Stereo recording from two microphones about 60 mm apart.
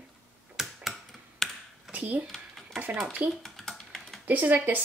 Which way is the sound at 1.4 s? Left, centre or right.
Centre.